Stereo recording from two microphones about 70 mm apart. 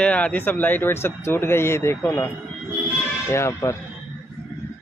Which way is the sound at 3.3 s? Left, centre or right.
Left.